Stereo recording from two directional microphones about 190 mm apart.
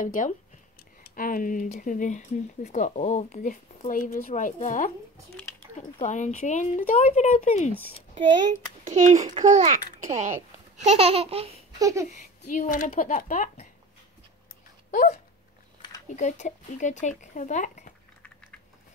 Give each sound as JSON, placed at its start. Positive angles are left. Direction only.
{"t": 0.0, "sound": "speech", "side_deg": 45}
{"t": 5.9, "sound": "speech", "side_deg": 40}
{"t": 8.8, "sound": "a child's voice", "side_deg": -40}
{"t": 11.8, "sound": "a sound", "side_deg": -15}
{"t": 12.5, "sound": "speech", "side_deg": 45}
{"t": 14.9, "sound": "a sound", "side_deg": 45}
{"t": 16.2, "sound": "speech", "side_deg": 40}